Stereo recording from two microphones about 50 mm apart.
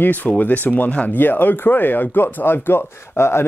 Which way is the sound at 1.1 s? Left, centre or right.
Left.